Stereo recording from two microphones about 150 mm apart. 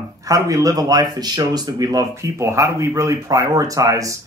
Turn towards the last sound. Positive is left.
turn(degrees=-20)  # may be behind; listen again after turning